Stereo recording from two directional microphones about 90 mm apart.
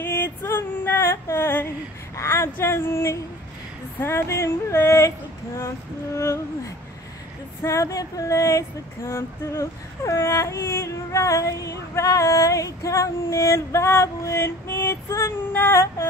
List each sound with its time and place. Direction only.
0.0 s female singing: 25° left (ahead or behind)
2.1 s speech: 30° left (ahead or behind)
4.0 s a sound: 30° left (ahead or behind)
6.1 s female singing: 35° left (ahead or behind)